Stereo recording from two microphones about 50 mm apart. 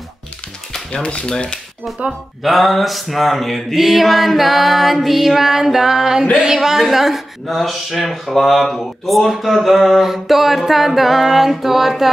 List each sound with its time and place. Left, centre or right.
1.0 s speech: centre
2.4 s speech: centre